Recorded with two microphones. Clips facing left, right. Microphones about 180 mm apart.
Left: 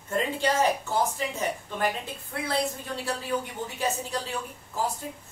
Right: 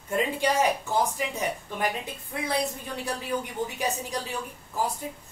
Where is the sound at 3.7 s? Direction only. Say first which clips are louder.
Left 5 dB; 15° right (ahead or behind).